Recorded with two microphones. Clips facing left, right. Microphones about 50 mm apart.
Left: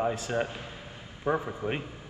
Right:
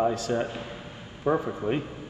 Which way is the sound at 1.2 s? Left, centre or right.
Right.